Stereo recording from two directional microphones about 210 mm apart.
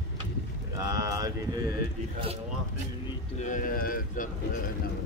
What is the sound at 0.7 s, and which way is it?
Speech, 15° right (ahead or behind).